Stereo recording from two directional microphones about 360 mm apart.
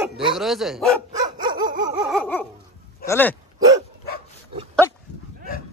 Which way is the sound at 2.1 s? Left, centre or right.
Centre.